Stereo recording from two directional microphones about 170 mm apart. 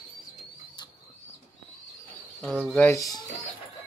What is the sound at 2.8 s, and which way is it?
Speech, 20° left (ahead or behind).